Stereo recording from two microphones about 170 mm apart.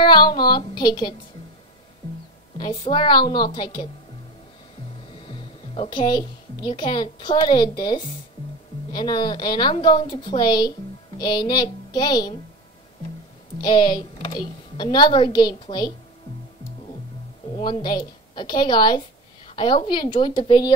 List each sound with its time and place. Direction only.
0.0 s speech: 25° left (ahead or behind)
2.5 s a woman's voice: 25° left (ahead or behind)
5.2 s a woman's voice: 30° left (ahead or behind)
13.6 s a woman's voice: 25° left (ahead or behind)
17.6 s a woman's voice: 30° left (ahead or behind)